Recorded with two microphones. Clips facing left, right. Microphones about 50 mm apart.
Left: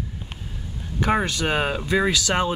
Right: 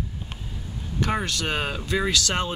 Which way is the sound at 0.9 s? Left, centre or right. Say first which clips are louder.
Left 4 dB; centre.